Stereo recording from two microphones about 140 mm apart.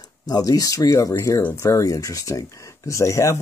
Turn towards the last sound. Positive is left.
turn(degrees=20)  # may be behind; listen again after turning